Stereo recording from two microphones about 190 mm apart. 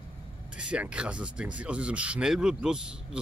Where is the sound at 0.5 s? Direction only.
5° right (ahead or behind).